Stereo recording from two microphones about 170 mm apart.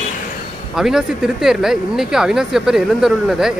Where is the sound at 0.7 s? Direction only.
5° right (ahead or behind).